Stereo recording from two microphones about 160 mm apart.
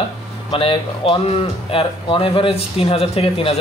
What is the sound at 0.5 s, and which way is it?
Speech, 35° left (ahead or behind).